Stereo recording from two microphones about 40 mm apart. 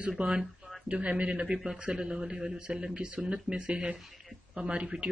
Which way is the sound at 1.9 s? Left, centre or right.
Right.